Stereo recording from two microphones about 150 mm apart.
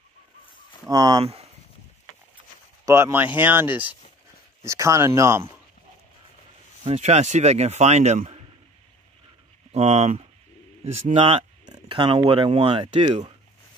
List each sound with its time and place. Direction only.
0.8 s speech: 25° right (ahead or behind)
2.8 s speech: 20° right (ahead or behind)
6.8 s speech: 45° right (ahead or behind)
9.7 s speech: 45° right (ahead or behind)
11.6 s a sound: 30° right (ahead or behind)
12.3 s speech: 35° right (ahead or behind)